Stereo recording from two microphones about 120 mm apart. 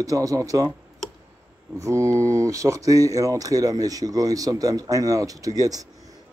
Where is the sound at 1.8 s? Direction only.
25° right (ahead or behind).